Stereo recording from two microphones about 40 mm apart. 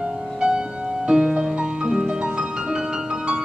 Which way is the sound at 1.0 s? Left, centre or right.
Right.